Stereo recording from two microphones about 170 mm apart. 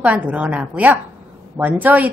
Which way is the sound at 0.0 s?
10° right (ahead or behind).